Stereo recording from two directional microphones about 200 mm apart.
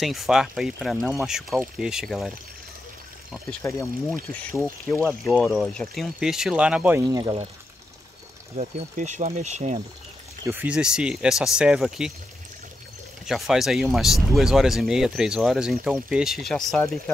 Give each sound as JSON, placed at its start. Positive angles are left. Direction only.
{"t": 0.0, "sound": "speech", "side_deg": 0}
{"t": 3.6, "sound": "speech", "side_deg": 10}
{"t": 7.1, "sound": "speech", "side_deg": -20}
{"t": 8.5, "sound": "speech", "side_deg": -35}
{"t": 10.4, "sound": "speech", "side_deg": -10}
{"t": 13.2, "sound": "speech", "side_deg": 0}